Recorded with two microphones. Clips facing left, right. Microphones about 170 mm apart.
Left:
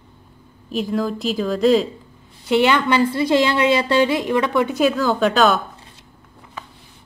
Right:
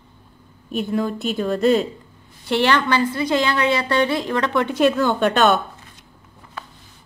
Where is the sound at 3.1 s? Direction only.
25° left (ahead or behind); by 5.6 s centre (ahead or behind).